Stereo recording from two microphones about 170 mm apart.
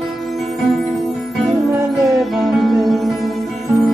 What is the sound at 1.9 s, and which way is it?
Music, centre (ahead or behind).